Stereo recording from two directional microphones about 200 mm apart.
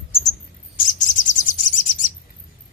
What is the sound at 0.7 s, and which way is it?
Chirp, 40° left (ahead or behind).